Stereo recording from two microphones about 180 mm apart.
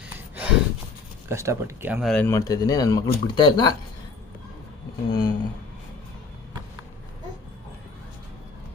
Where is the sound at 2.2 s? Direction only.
20° left (ahead or behind).